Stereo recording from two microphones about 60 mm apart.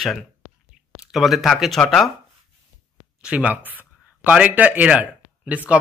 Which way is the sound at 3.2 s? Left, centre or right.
Right.